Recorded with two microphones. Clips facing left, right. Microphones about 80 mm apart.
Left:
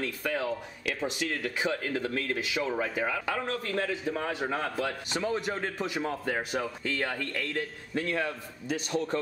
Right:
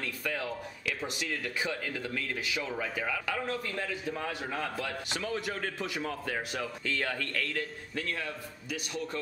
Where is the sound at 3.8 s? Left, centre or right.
Left.